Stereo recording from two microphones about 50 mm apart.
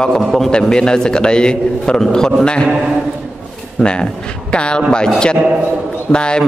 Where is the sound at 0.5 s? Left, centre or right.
Centre.